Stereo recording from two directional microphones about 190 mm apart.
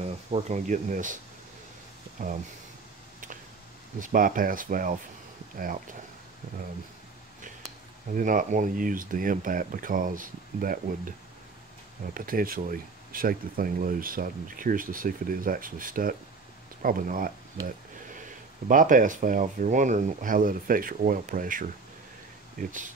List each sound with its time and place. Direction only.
0.0 s speech: 35° right (ahead or behind)
4.0 s speech: 45° right (ahead or behind)
8.1 s speech: 45° right (ahead or behind)
18.7 s speech: 45° right (ahead or behind)